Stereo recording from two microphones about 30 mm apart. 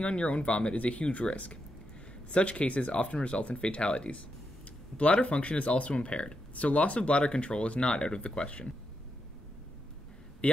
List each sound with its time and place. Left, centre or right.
0.0 s speech: left
0.7 s speech: left
4.9 s speech: left
5.9 s speech: left
6.5 s speech: left
10.4 s a sound: left